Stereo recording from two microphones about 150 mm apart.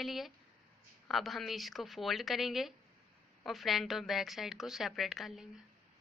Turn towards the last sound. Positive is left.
turn(degrees=0)  # may be behind; listen again after turning